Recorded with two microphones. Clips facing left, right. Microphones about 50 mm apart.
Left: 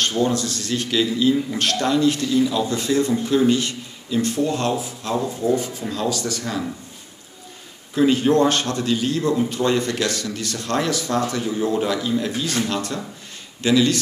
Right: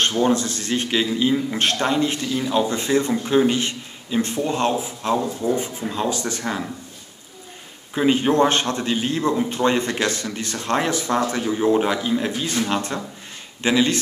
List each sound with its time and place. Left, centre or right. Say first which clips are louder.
0.0 s a man's voice: right 2 dB; right
7.9 s a man's voice: left 2 dB; right